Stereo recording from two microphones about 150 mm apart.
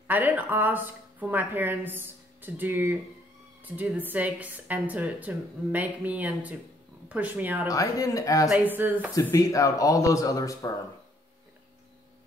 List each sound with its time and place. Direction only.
0.1 s a woman's voice: 10° right (ahead or behind)
7.7 s speech: 20° left (ahead or behind)
8.5 s a woman's voice: 10° right (ahead or behind)
9.1 s speech: 20° left (ahead or behind)